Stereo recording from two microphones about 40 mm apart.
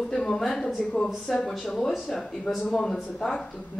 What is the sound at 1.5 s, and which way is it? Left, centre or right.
Speech, centre.